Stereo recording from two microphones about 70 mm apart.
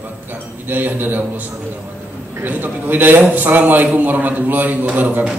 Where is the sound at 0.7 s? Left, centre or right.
Right.